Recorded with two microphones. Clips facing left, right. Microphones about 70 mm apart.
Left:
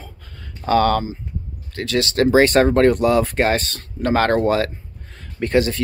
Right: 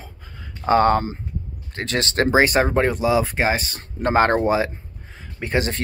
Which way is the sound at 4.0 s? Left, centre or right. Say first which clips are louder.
Even; right.